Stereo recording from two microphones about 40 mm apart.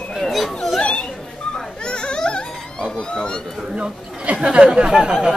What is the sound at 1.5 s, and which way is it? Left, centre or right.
Baby cry, centre.